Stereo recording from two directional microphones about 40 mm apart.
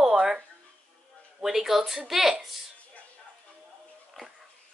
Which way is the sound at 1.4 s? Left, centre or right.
Centre.